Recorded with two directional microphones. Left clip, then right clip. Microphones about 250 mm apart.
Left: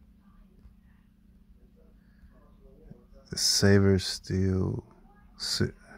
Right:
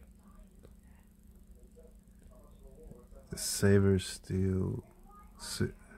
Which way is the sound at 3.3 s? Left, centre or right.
Centre.